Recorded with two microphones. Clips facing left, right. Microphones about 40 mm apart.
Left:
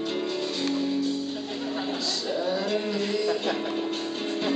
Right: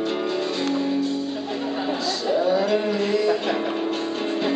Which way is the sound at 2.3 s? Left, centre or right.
Centre.